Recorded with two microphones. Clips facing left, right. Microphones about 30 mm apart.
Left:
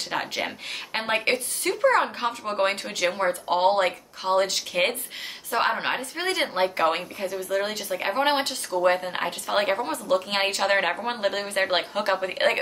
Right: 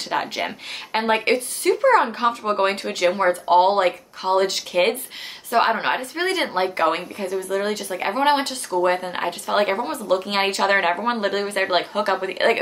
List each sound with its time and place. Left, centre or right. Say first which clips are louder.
0.1 s speech: right 5 dB; centre
2.2 s speech: right 5 dB; right